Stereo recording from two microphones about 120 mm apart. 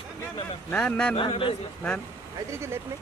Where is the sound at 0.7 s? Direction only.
5° left (ahead or behind).